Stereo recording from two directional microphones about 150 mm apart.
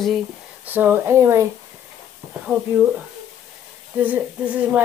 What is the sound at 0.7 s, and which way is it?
Speech, 15° right (ahead or behind).